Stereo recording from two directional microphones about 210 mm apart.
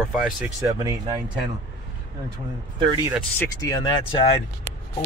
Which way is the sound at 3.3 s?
15° left (ahead or behind).